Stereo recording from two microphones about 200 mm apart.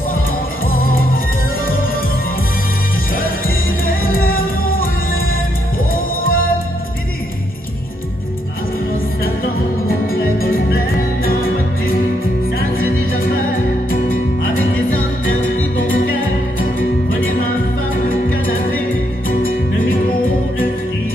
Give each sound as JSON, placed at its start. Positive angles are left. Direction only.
{"t": 0.7, "sound": "music", "side_deg": 45}
{"t": 6.2, "sound": "music", "side_deg": 45}
{"t": 9.8, "sound": "music", "side_deg": 45}
{"t": 12.5, "sound": "music", "side_deg": 45}
{"t": 18.0, "sound": "music", "side_deg": 45}